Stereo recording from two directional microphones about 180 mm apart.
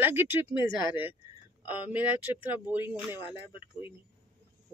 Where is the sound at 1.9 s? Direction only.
10° right (ahead or behind).